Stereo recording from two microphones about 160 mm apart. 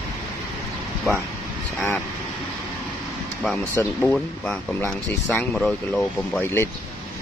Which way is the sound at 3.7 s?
15° left (ahead or behind).